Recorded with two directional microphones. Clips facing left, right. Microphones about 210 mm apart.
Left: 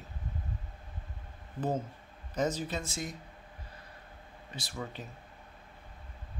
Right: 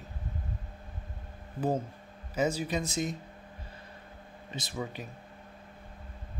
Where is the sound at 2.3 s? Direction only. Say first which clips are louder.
Right 3 dB; 10° right (ahead or behind).